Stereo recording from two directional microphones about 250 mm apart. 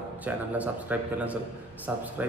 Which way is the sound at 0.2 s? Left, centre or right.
Centre.